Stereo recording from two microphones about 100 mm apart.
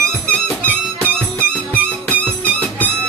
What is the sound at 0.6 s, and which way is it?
Music, 15° left (ahead or behind).